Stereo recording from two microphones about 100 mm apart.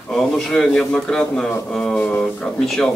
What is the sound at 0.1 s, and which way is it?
A man's voice, 5° left (ahead or behind).